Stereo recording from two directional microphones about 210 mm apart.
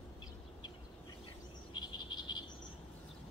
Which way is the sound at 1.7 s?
20° left (ahead or behind).